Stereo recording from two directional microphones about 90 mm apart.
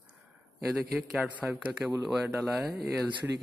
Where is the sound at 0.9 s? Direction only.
5° right (ahead or behind).